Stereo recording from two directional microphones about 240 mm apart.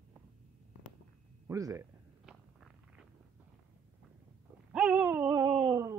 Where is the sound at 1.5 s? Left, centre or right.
Centre.